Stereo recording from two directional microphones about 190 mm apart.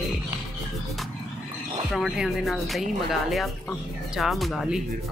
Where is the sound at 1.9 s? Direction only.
Centre (ahead or behind).